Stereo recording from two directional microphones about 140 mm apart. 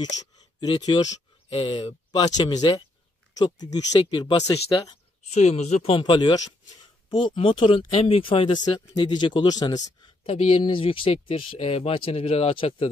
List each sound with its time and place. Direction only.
0.7 s speech: 35° left (ahead or behind)
5.3 s speech: 50° left (ahead or behind); by 9.8 s 30° left (ahead or behind)
9.8 s speech: 45° left (ahead or behind)